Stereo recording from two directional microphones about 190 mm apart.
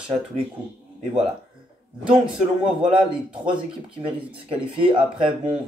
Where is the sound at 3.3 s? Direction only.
5° right (ahead or behind).